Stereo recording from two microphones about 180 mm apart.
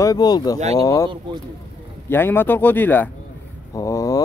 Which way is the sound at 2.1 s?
10° left (ahead or behind).